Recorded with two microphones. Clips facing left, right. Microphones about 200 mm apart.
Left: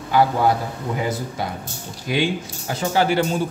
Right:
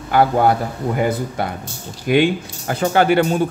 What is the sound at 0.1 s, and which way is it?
A man's voice, 55° right (ahead or behind).